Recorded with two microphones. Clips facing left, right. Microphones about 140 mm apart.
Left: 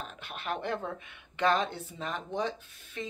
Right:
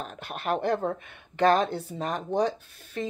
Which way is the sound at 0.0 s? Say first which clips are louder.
Right 6 dB; 45° right (ahead or behind).